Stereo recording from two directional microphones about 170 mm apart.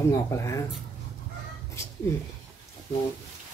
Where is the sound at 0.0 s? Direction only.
15° left (ahead or behind).